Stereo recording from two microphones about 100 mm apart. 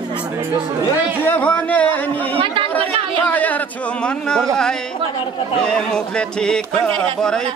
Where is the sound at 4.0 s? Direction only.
10° left (ahead or behind).